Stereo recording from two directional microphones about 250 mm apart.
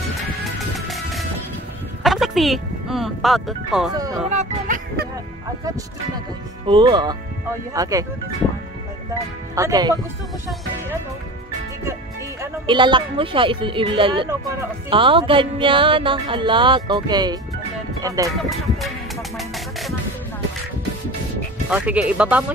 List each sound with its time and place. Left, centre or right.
0.1 s music: centre
2.0 s speech: centre
3.9 s speech: centre
4.3 s speech: right
6.6 s speech: centre
9.6 s speech: centre
12.4 s speech: centre
18.8 s music: centre
21.6 s speech: centre